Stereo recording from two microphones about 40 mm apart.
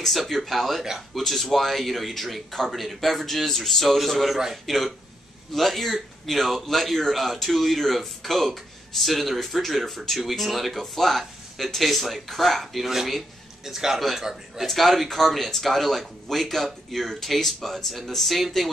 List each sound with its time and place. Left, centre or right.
0.0 s a man's voice: centre